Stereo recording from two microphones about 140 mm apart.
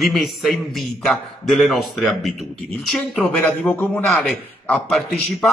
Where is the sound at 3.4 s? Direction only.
15° left (ahead or behind).